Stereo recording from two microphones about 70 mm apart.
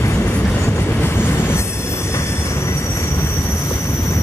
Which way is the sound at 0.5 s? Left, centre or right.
Left.